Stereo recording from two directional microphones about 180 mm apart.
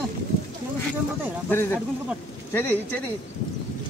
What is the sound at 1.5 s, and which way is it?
Speech, 10° left (ahead or behind).